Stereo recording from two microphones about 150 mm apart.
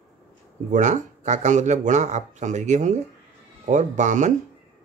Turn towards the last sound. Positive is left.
turn(degrees=-55)  # may be behind; listen again after turning